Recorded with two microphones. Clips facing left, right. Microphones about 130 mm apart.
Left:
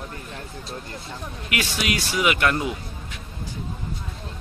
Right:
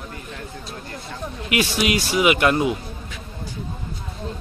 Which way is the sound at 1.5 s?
20° right (ahead or behind).